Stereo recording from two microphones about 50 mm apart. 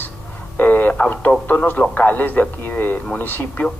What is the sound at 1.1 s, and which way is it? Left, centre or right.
Speech, left.